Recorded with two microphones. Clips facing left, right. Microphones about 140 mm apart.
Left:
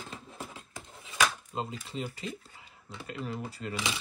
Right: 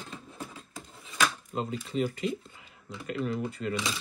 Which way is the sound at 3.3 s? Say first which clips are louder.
Right 6 dB; 35° left (ahead or behind).